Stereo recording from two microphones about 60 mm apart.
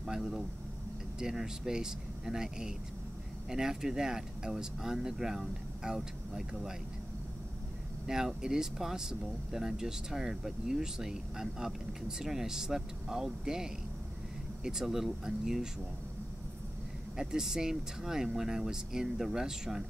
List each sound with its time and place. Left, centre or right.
0.0 s speech: centre
8.1 s speech: centre
17.2 s speech: centre